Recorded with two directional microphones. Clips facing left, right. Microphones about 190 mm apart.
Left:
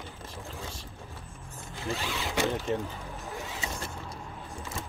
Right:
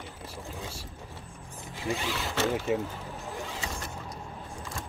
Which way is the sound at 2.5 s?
10° right (ahead or behind).